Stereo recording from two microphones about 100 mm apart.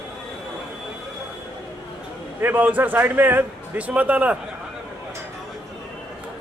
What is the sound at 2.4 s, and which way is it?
Speech, 20° right (ahead or behind).